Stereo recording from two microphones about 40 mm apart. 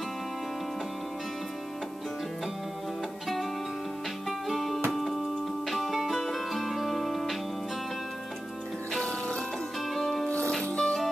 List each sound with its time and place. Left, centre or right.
4.3 s music: centre
10.6 s music: left